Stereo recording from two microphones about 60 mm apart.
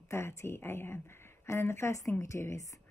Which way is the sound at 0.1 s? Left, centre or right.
Left.